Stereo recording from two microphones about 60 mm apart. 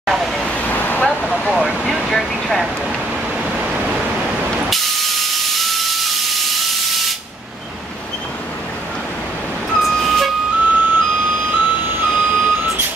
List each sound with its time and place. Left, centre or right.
0.0 s vehicle: centre
0.5 s vehicle: left
1.5 s vehicle: centre
2.0 s speech: centre
4.6 s steam: centre
9.8 s vehicle: centre
10.6 s music: right